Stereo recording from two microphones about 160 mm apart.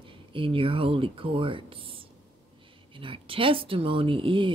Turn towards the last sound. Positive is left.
turn(degrees=-35)  # may be behind; listen again after turning